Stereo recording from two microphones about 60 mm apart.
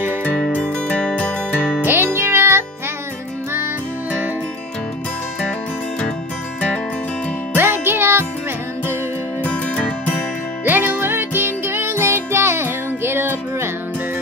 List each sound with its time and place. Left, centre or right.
0.2 s music: left
2.1 s music: right
7.5 s music: right
9.4 s music: left
10.6 s music: right